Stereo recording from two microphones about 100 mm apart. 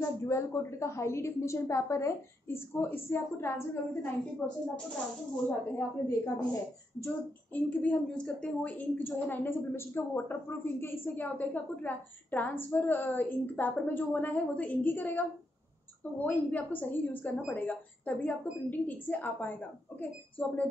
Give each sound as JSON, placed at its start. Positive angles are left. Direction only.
{"t": 0.0, "sound": "a woman's voice", "side_deg": 25}
{"t": 4.4, "sound": "speech", "side_deg": 0}
{"t": 5.8, "sound": "a woman's voice", "side_deg": 35}
{"t": 7.5, "sound": "a woman's voice", "side_deg": 15}